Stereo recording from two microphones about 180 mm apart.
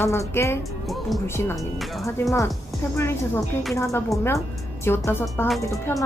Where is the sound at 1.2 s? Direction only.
15° left (ahead or behind).